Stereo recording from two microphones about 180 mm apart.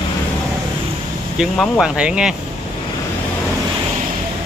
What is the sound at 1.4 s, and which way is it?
Speech, centre (ahead or behind).